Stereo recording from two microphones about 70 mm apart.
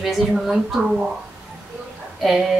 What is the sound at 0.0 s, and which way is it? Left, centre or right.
A woman's voice, centre.